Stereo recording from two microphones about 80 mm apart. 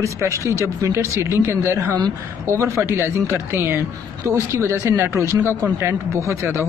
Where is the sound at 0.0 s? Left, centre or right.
Right.